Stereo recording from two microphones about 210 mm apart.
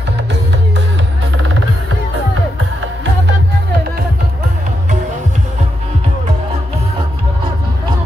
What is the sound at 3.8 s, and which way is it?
Music, 45° right (ahead or behind).